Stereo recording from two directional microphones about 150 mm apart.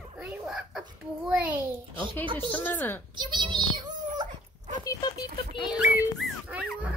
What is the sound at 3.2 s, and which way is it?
Speech, 30° right (ahead or behind).